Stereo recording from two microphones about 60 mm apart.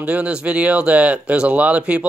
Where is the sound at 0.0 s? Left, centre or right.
Right.